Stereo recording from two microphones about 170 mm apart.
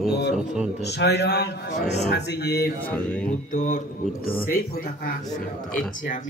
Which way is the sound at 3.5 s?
55° left (ahead or behind).